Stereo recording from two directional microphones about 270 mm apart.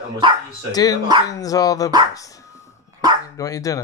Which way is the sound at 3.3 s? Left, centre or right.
Centre.